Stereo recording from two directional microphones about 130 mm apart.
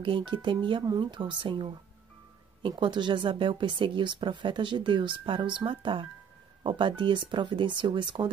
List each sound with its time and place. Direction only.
0.0 s speech: 40° right (ahead or behind)